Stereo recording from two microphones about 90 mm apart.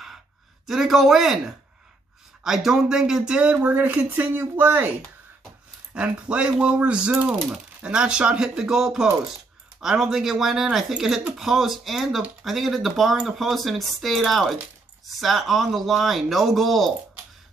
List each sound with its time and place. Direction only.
0.7 s speech: centre (ahead or behind)
2.4 s speech: 5° right (ahead or behind); by 4.9 s 20° right (ahead or behind)
5.9 s speech: 10° right (ahead or behind)